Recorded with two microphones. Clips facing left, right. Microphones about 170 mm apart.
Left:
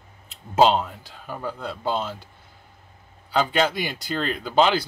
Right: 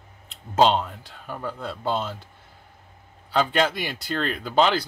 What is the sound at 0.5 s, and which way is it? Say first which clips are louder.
Speech: left 1 dB; 5° left (ahead or behind).